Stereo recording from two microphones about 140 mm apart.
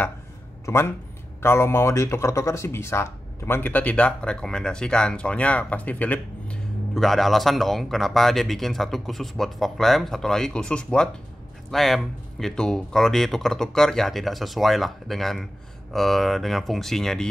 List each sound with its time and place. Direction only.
0.7 s speech: 20° left (ahead or behind)